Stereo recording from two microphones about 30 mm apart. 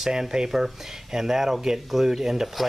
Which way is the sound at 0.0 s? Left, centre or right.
Centre.